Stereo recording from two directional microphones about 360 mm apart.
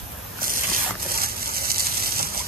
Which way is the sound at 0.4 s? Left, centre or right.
Right.